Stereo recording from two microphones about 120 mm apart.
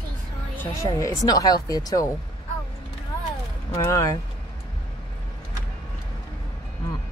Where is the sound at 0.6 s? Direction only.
25° left (ahead or behind).